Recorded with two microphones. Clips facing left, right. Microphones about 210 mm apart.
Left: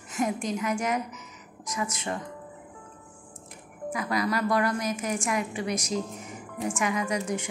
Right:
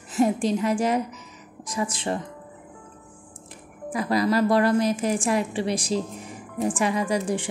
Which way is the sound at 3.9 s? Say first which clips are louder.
Right 6 dB; 35° right (ahead or behind).